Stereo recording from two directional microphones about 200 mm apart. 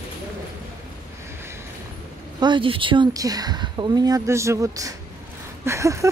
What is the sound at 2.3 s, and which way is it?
Speech, 25° right (ahead or behind).